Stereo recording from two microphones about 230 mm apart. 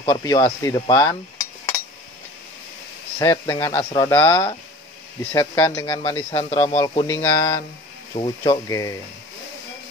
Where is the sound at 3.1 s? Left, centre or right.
Centre.